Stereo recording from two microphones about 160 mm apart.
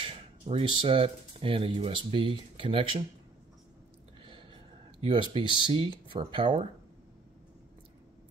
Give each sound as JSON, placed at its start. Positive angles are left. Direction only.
{"t": 0.0, "sound": "speech", "side_deg": -35}
{"t": 4.2, "sound": "a sound", "side_deg": -30}
{"t": 5.0, "sound": "speech", "side_deg": -30}